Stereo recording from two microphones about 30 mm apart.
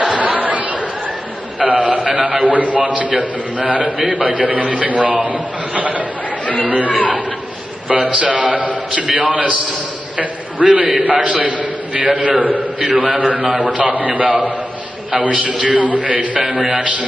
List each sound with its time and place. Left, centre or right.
0.0 s chatter: right
1.6 s a sound: right
2.1 s a man's voice: right
6.4 s speech: left
6.7 s a man's voice: right